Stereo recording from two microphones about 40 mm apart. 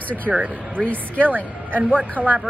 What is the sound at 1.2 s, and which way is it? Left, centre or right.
Speech, right.